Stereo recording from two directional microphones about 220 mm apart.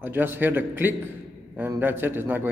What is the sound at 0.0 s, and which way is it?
A man's voice, 10° right (ahead or behind).